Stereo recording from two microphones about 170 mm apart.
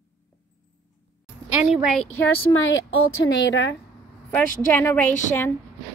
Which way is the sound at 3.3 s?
90° left.